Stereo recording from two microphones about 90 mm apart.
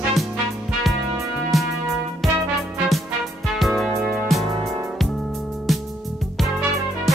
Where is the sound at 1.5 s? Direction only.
Centre (ahead or behind).